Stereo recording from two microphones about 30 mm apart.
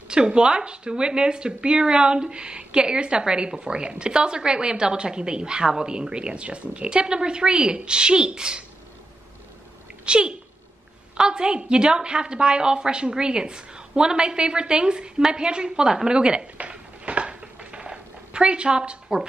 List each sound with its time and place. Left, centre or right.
0.1 s a woman's voice: right
6.9 s a woman's voice: right
10.0 s a child's voice: right
16.5 s a sound: right
17.9 s zipper: right